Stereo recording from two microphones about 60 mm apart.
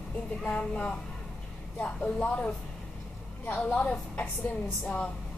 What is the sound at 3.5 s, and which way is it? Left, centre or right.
Speech, left.